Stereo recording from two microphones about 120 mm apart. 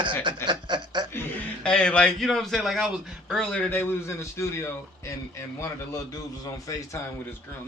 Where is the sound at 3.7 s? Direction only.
20° left (ahead or behind).